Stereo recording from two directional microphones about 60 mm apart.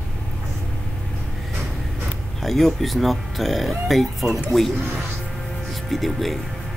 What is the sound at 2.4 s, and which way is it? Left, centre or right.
Speech, centre.